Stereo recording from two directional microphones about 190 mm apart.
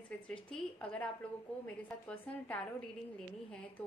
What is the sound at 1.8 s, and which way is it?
Speech, 5° left (ahead or behind).